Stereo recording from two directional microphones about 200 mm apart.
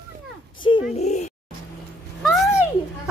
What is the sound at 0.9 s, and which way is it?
Speech, 35° left (ahead or behind).